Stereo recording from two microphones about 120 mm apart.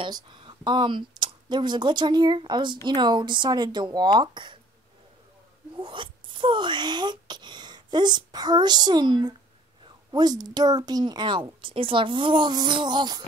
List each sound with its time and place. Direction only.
0.0 s speech: 40° right (ahead or behind)
5.8 s speech: 45° right (ahead or behind)